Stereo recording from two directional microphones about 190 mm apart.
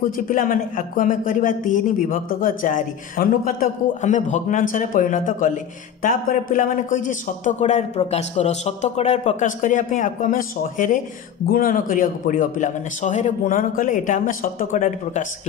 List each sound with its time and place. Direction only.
0.3 s a man's voice: 45° left (ahead or behind)